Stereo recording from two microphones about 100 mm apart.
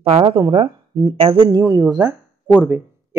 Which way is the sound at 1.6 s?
35° right (ahead or behind).